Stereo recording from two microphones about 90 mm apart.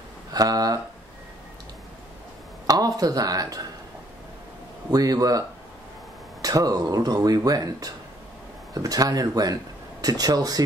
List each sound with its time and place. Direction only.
0.3 s speech: 45° right (ahead or behind)
2.6 s speech: 45° right (ahead or behind)
4.9 s speech: 45° right (ahead or behind)
6.4 s speech: 45° right (ahead or behind)